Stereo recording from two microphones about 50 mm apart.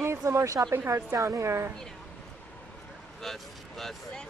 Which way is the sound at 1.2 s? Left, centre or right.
Right.